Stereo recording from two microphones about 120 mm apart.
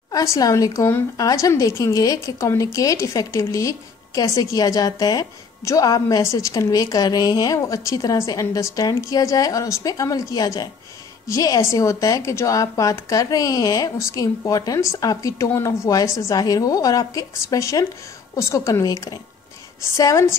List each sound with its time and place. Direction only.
0.1 s a woman's voice: 30° left (ahead or behind)